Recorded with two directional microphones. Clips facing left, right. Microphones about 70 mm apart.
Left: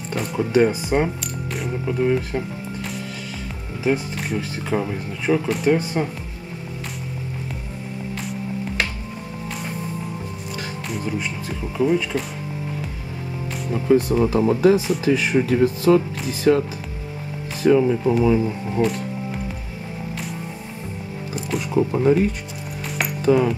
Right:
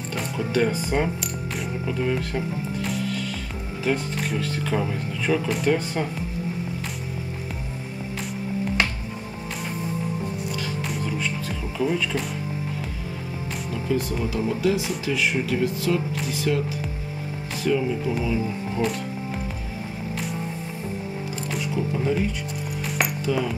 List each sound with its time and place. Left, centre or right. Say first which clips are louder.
0.1 s music: left 5 dB; centre
0.4 s speech: left 5 dB; centre
1.2 s music: left 2 dB; centre
1.9 s speech: left 5 dB; centre
3.1 s music: right 2 dB; centre
4.4 s speech: left 2 dB; centre
11.1 s speech: left 1 dB; centre
13.8 s speech: left 9 dB; left
17.6 s speech: left 7 dB; left
18.8 s speech: left 5 dB; left
21.7 s speech: left 9 dB; left
23.2 s speech: left 11 dB; left